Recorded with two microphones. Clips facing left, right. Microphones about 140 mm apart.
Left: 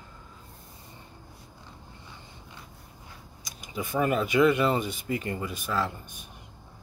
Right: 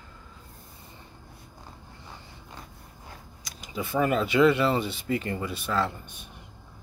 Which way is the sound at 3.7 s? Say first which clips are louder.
Right 1 dB; 15° left (ahead or behind).